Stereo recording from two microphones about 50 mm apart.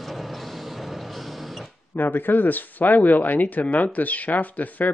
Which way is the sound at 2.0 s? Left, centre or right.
Left.